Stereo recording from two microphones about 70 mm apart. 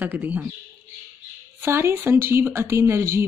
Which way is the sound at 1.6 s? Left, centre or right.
Right.